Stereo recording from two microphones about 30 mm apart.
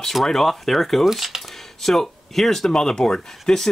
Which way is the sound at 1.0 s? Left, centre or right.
Centre.